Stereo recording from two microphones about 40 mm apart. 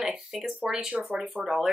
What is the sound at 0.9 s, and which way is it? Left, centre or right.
Speech, right.